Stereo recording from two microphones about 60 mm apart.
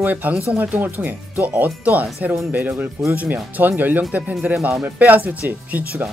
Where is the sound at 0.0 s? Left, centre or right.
Right.